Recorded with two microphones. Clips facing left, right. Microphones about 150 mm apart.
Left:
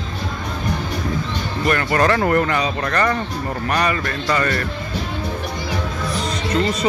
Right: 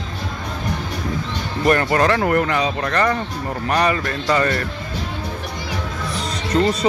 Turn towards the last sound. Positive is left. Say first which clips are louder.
# right 2 dB
turn(degrees=-40)  # may be behind; listen again after turning